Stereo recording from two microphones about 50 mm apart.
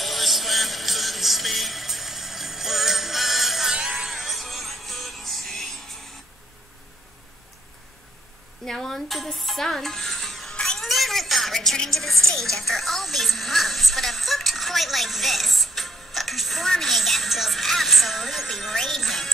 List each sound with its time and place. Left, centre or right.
0.0 s music: centre
8.6 s speech: centre
10.5 s a sound: centre
10.8 s music: centre